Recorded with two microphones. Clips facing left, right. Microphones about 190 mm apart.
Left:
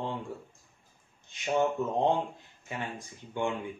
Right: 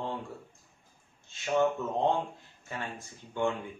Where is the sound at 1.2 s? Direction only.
15° left (ahead or behind).